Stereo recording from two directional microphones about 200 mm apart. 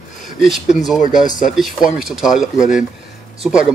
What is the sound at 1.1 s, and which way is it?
Speech, 40° left (ahead or behind).